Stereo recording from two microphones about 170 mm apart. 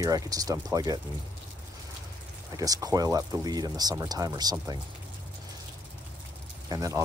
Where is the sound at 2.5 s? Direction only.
20° right (ahead or behind).